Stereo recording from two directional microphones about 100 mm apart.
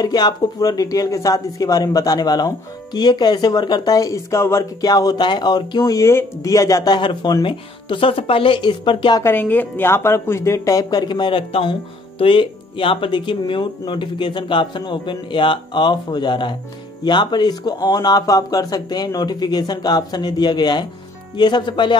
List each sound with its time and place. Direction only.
0.0 s speech: 40° left (ahead or behind)
4.9 s speech: 45° left (ahead or behind)
6.9 s speech: 50° left (ahead or behind)
9.2 s a woman's voice: 20° left (ahead or behind); by 21.9 s 50° left (ahead or behind)